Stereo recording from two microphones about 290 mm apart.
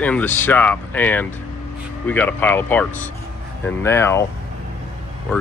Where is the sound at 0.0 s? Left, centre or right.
Centre.